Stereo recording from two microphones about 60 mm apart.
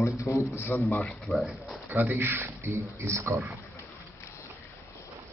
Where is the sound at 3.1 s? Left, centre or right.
Right.